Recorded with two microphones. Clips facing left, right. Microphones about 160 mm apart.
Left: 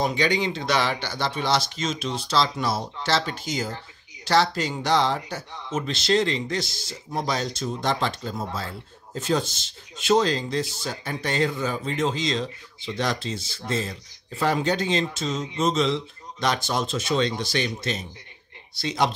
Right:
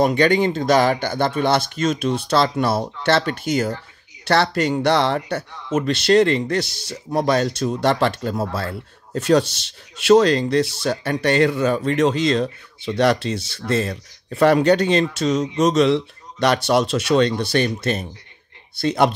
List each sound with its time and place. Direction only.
0.0 s speech: 55° right (ahead or behind)